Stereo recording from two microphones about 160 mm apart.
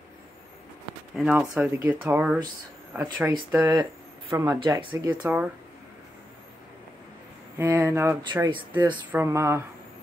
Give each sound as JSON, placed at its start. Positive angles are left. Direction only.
{"t": 1.1, "sound": "speech", "side_deg": -5}
{"t": 4.6, "sound": "speech", "side_deg": -30}
{"t": 5.2, "sound": "speech", "side_deg": -10}
{"t": 7.5, "sound": "speech", "side_deg": -10}
{"t": 8.2, "sound": "speech", "side_deg": -30}
{"t": 9.1, "sound": "speech", "side_deg": -15}